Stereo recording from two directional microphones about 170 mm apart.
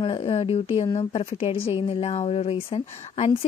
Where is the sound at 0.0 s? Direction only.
35° left (ahead or behind).